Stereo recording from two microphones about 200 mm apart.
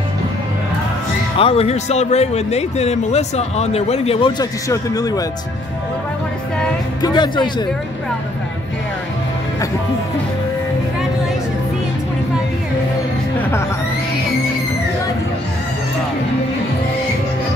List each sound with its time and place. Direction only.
1.4 s speech: 30° left (ahead or behind)
7.0 s speech: 20° left (ahead or behind)